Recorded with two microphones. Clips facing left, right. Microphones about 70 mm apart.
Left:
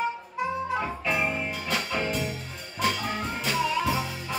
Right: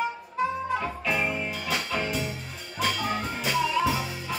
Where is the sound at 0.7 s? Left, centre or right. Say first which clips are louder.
Even; centre.